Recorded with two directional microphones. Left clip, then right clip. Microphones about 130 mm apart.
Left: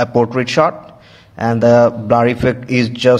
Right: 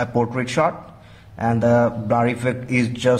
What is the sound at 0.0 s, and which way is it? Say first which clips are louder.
A man's voice: left 7 dB; 35° left (ahead or behind).